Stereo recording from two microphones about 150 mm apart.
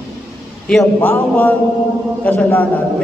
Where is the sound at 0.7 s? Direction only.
10° left (ahead or behind).